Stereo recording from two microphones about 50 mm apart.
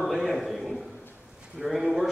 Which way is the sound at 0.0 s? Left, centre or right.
Centre.